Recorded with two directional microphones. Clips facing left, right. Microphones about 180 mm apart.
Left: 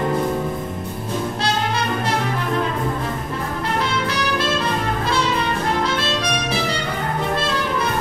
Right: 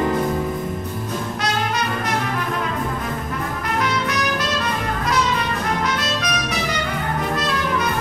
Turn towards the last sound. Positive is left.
turn(degrees=30)  # may be behind; listen again after turning